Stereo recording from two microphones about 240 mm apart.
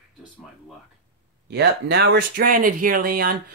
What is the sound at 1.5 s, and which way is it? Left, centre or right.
Speech, right.